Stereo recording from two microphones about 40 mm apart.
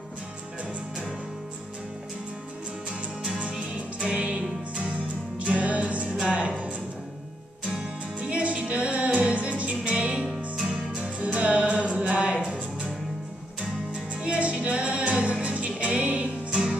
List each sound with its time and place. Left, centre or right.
3.3 s music: right
8.2 s music: right
9.8 s music: right
10.5 s music: centre
11.0 s music: right
14.1 s music: right